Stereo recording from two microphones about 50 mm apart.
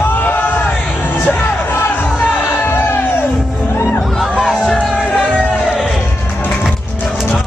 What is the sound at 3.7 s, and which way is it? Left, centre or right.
Music, left.